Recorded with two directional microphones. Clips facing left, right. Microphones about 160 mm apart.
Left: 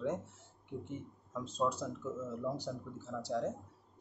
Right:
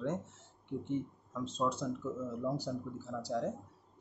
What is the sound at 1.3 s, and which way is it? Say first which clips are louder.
Speech: even; 10° left (ahead or behind).